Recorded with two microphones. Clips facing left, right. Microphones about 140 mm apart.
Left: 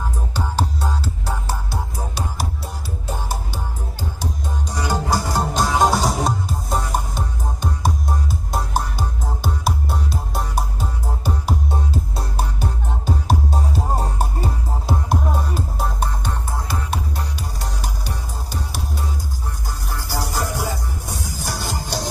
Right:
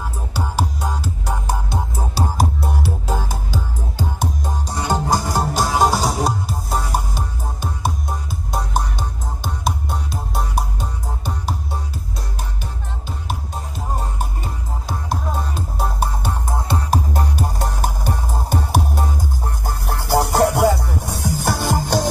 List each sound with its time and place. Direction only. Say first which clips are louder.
0.3 s music: right 1 dB; 10° right (ahead or behind)
2.3 s music: right 7 dB; 55° right (ahead or behind)
4.6 s music: right 2 dB; 25° right (ahead or behind)
5.3 s music: right 1 dB; 5° right (ahead or behind)
13.0 s music: left 8 dB; 35° left (ahead or behind)
15.5 s music: even; 5° right (ahead or behind)
16.4 s music: right 4 dB; 25° right (ahead or behind)
16.9 s music: right 6 dB; 45° right (ahead or behind)